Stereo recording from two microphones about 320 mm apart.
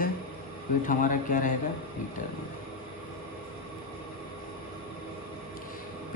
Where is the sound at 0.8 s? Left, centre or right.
Left.